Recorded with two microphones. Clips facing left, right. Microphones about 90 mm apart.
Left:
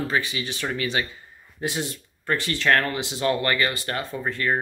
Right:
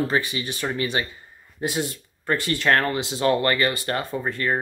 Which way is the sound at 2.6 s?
30° right (ahead or behind).